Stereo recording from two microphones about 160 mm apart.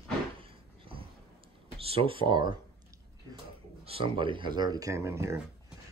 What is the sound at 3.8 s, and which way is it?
Speech, 35° right (ahead or behind).